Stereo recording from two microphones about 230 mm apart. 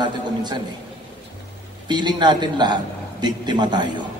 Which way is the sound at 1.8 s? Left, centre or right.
Centre.